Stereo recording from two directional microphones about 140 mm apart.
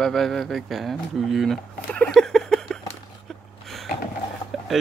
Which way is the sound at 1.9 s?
5° left (ahead or behind).